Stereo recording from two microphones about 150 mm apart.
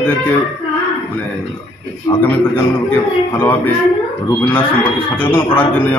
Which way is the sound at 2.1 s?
25° left (ahead or behind).